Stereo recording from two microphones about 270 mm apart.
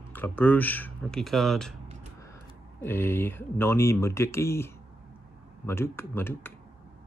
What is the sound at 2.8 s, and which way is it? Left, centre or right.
Speech, centre.